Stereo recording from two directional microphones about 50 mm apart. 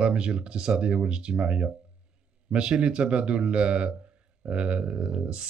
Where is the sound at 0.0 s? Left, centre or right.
Centre.